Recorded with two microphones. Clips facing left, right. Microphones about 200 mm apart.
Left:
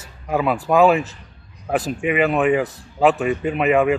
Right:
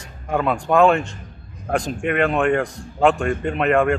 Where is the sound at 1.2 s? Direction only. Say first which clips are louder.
Right 6 dB; 50° right (ahead or behind).